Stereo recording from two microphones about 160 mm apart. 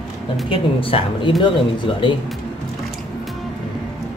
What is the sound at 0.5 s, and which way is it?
Speech, 35° left (ahead or behind).